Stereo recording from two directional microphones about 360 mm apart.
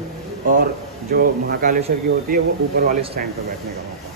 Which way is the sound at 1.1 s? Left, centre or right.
Right.